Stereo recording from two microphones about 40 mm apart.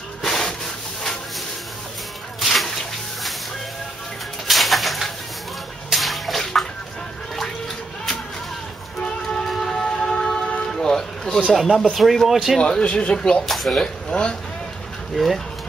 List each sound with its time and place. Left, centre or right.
0.2 s sanding: centre
2.4 s a sound: centre
4.5 s bird: centre
5.9 s water: centre
9.0 s a sound: left
9.5 s music: centre
11.5 s speech: centre
12.5 s speech: centre
13.5 s speech: centre
13.7 s speech: centre
15.1 s speech: centre